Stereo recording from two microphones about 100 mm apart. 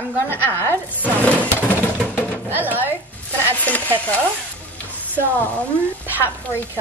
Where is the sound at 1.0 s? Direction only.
15° left (ahead or behind).